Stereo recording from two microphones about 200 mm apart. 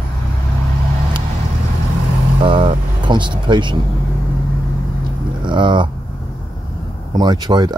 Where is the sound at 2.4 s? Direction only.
25° right (ahead or behind).